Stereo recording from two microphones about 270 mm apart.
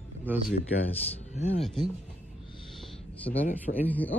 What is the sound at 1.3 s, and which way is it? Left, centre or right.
Speech, left.